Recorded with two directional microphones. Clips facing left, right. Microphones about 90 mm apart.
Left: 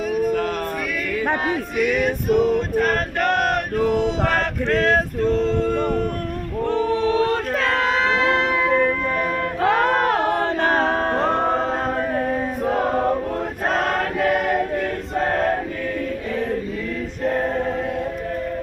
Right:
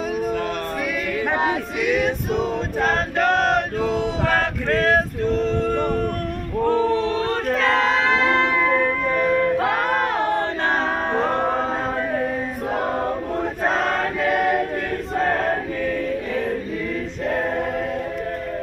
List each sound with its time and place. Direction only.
1.3 s music: 10° right (ahead or behind)
2.3 s choir: 55° left (ahead or behind)
3.2 s chant: 25° right (ahead or behind)
8.2 s music: centre (ahead or behind)